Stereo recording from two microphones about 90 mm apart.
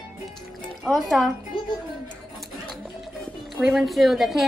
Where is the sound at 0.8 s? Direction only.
Centre (ahead or behind).